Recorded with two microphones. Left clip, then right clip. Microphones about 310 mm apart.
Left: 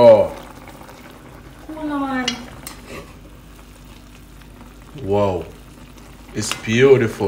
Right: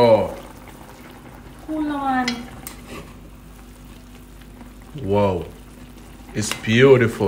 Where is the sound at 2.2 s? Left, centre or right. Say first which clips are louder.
Left 2 dB; centre.